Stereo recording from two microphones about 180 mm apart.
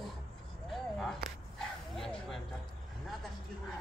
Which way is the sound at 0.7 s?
Centre (ahead or behind).